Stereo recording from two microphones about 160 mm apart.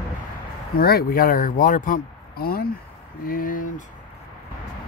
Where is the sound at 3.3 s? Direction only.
60° left (ahead or behind).